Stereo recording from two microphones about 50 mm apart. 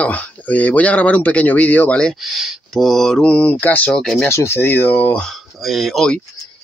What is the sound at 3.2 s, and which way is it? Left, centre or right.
Speech, left.